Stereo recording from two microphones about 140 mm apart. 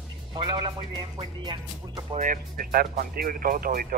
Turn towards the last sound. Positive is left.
turn(degrees=-90)